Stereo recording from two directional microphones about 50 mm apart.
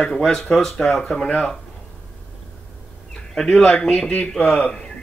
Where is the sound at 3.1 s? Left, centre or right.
Centre.